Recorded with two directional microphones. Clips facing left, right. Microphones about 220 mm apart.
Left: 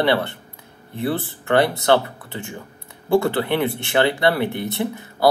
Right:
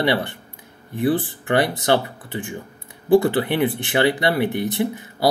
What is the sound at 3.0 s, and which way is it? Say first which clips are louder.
Speech: right 2 dB; 15° right (ahead or behind).